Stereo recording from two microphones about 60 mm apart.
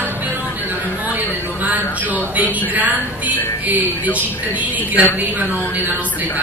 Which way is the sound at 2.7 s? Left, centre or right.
Right.